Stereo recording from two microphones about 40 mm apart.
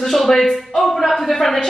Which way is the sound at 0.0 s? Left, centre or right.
Centre.